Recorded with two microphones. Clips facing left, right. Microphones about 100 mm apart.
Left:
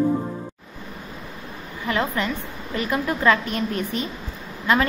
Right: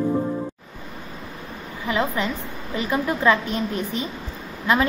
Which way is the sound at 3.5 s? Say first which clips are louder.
Even; 50° left (ahead or behind).